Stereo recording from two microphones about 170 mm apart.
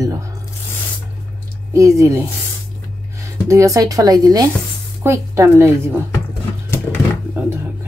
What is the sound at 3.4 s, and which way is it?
A woman's voice, 20° right (ahead or behind).